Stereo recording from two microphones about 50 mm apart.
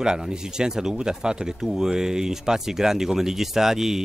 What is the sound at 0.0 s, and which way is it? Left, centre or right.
Speech, centre.